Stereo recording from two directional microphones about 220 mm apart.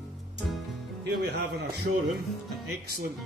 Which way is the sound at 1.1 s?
45° right (ahead or behind).